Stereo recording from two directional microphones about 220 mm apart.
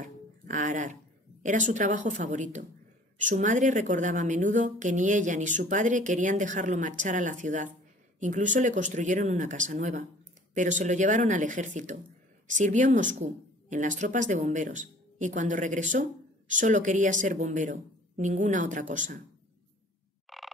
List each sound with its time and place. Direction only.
0.0 s a sound: 35° right (ahead or behind)
1.4 s a woman's voice: 35° right (ahead or behind)
20.2 s frog: centre (ahead or behind)